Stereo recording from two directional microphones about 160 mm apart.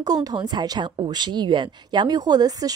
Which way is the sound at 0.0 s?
25° right (ahead or behind).